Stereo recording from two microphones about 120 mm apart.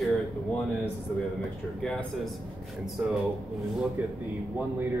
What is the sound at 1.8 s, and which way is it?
Speech, 5° left (ahead or behind).